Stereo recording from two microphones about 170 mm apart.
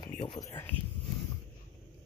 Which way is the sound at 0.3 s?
20° left (ahead or behind).